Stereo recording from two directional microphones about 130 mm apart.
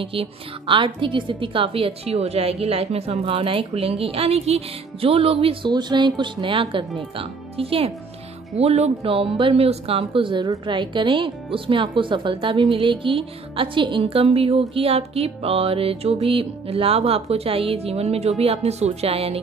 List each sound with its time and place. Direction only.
0.0 s speech: 45° right (ahead or behind)